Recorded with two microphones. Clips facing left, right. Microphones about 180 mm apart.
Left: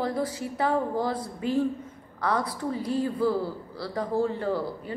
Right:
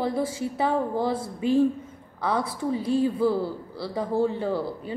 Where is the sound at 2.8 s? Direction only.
25° right (ahead or behind).